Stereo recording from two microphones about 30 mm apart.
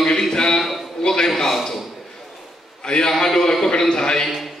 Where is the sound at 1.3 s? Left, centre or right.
Centre.